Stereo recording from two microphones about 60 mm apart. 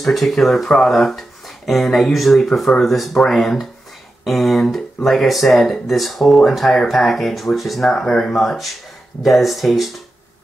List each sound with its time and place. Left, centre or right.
0.0 s speech: centre